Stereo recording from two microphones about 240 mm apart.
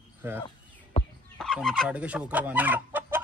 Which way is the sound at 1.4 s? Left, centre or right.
Centre.